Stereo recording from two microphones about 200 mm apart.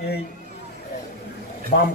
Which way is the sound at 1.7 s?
50° left (ahead or behind).